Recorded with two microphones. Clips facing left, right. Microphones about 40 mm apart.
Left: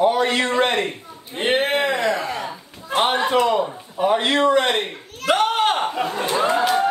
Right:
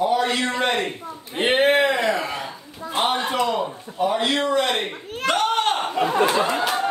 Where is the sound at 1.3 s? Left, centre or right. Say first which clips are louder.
Right 2 dB; centre.